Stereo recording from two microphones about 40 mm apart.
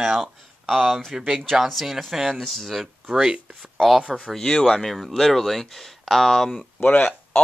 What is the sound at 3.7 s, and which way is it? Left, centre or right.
Speech, centre.